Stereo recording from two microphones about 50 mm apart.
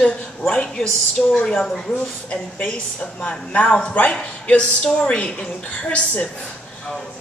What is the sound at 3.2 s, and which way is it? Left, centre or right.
A woman's voice, left.